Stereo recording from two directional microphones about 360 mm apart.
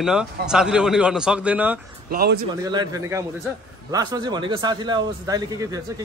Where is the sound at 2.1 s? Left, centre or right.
Right.